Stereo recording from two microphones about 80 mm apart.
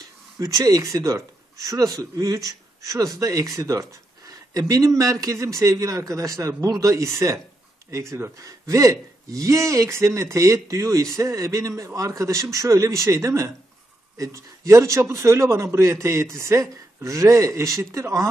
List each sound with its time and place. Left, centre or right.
0.4 s speech: right